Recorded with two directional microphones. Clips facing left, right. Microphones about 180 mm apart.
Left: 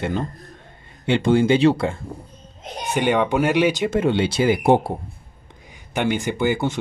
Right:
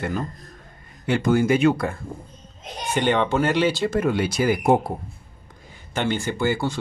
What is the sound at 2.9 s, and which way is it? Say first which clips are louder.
Speech: left 2 dB; 10° left (ahead or behind).